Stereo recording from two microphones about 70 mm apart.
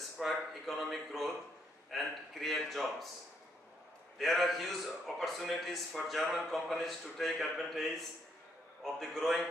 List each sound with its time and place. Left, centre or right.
0.2 s a man's voice: centre
4.2 s a man's voice: centre